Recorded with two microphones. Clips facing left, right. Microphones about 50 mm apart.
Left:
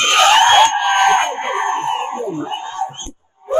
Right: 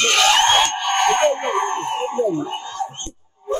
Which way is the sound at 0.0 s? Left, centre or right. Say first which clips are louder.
Left 5 dB; left.